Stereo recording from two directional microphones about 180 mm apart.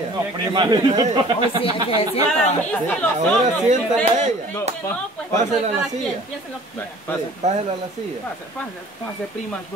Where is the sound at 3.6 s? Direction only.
40° right (ahead or behind).